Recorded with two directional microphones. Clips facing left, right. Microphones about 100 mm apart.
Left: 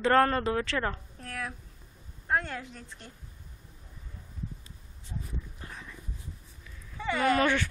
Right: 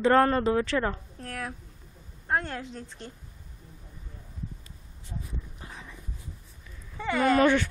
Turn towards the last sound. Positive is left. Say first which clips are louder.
# right 4 dB
turn(degrees=-25)  # may be behind; listen again after turning